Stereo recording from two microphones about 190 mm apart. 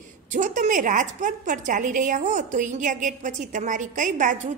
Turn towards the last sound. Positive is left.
turn(degrees=-40)  # may be behind; listen again after turning